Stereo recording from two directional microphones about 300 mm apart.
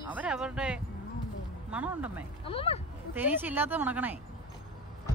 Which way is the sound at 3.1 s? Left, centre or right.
Centre.